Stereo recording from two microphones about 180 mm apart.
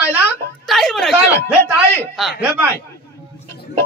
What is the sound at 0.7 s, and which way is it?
Speech, centre (ahead or behind).